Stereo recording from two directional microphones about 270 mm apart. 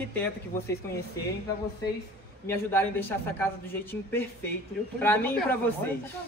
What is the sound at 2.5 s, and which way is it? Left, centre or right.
A man's voice, centre.